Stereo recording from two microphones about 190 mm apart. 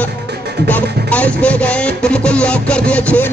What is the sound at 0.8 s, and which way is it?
Speech, 55° right (ahead or behind).